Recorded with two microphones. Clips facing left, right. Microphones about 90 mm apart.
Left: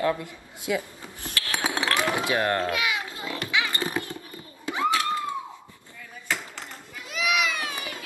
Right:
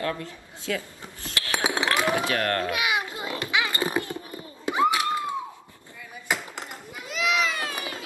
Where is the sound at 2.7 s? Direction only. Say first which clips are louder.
Right 1 dB; 20° right (ahead or behind).